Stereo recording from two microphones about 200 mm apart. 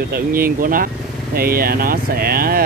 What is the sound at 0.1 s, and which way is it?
Speech, 45° right (ahead or behind).